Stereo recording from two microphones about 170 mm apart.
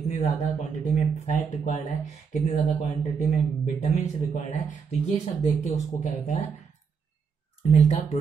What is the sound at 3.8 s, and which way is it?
Speech, 45° left (ahead or behind).